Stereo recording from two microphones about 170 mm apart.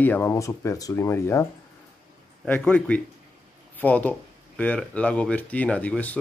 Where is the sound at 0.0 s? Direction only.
10° left (ahead or behind).